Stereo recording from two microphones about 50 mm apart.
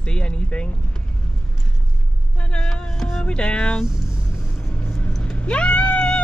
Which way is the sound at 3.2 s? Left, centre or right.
Centre.